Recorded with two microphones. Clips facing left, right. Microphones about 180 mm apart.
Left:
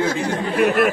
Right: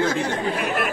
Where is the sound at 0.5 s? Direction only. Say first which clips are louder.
Left 7 dB; 45° left (ahead or behind).